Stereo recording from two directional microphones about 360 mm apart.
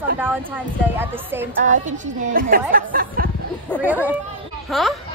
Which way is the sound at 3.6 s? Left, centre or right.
Centre.